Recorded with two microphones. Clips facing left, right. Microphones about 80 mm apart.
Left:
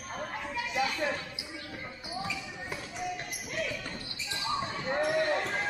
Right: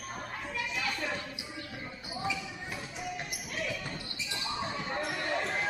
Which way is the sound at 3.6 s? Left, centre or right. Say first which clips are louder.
Left 1 dB; centre.